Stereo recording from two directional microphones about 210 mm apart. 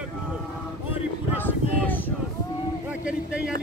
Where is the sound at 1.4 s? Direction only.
10° left (ahead or behind).